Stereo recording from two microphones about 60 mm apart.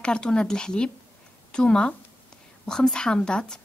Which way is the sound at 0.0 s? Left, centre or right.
Centre.